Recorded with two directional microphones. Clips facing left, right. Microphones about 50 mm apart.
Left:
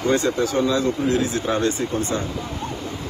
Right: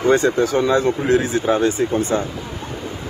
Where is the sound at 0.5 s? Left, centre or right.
Right.